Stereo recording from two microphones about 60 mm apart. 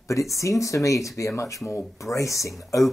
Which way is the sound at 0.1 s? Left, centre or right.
Left.